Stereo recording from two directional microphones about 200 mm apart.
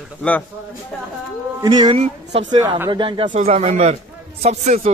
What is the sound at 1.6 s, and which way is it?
A man's voice, 20° right (ahead or behind).